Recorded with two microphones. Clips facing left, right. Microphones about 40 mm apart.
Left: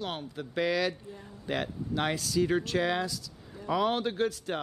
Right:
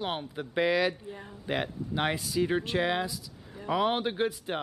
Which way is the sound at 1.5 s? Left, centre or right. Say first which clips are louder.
Right 1 dB; centre.